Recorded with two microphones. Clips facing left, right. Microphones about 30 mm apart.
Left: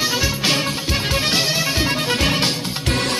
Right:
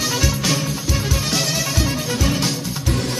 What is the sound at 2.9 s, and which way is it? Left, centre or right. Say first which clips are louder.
Music: left 3 dB; left.